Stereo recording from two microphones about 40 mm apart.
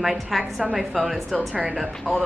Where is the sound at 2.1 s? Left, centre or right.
Left.